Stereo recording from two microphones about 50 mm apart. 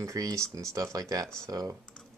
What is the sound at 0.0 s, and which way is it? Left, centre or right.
Speech, right.